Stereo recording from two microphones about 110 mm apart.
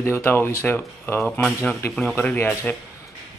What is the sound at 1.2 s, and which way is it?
A man's voice, 10° left (ahead or behind).